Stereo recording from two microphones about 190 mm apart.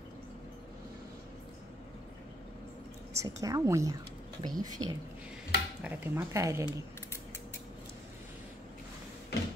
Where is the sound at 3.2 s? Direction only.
15° right (ahead or behind).